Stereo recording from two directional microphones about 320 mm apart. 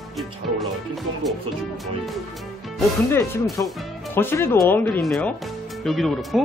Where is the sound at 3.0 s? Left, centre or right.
Centre.